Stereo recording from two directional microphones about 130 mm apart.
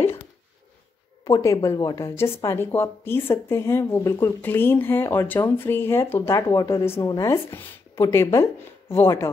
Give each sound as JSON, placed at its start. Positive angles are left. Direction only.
{"t": 1.2, "sound": "speech", "side_deg": 25}